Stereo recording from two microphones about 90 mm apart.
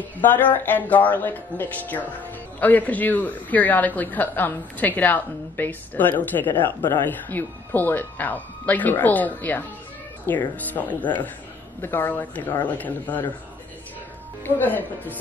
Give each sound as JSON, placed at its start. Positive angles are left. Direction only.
{"t": 0.2, "sound": "a man's voice", "side_deg": 20}
{"t": 14.4, "sound": "a man's voice", "side_deg": 20}